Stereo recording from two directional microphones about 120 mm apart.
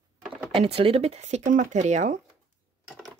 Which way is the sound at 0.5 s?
60° right (ahead or behind).